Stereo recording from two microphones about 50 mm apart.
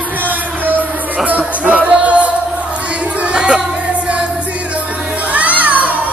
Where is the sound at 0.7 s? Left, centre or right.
Right.